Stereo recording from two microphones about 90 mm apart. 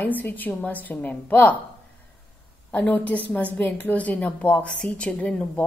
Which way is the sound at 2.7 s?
20° left (ahead or behind).